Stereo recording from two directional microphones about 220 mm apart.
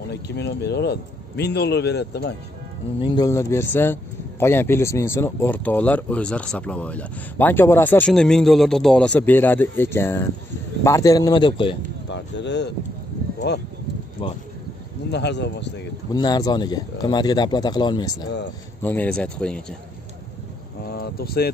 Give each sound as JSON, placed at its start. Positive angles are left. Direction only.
{"t": 0.1, "sound": "speech", "side_deg": 50}
{"t": 3.0, "sound": "a man's voice", "side_deg": 20}
{"t": 12.1, "sound": "a sound", "side_deg": 50}
{"t": 14.2, "sound": "speech", "side_deg": 25}
{"t": 15.0, "sound": "speech", "side_deg": 50}
{"t": 16.1, "sound": "speech", "side_deg": 20}
{"t": 18.8, "sound": "speech", "side_deg": 10}
{"t": 20.8, "sound": "a sound", "side_deg": 45}